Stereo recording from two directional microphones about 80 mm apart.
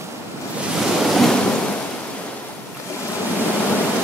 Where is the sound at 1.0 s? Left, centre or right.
Centre.